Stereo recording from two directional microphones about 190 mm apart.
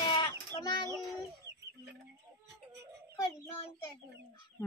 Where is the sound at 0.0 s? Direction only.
25° left (ahead or behind).